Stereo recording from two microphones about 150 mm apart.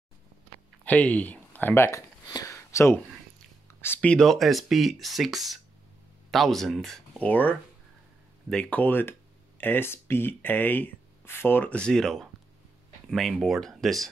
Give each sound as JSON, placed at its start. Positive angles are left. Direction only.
{"t": 0.8, "sound": "speech", "side_deg": 10}